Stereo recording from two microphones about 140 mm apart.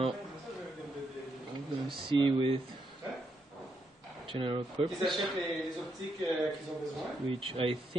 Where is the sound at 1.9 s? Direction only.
35° right (ahead or behind).